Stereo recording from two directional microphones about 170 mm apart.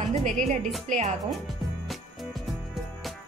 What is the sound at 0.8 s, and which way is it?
Speech, 45° right (ahead or behind).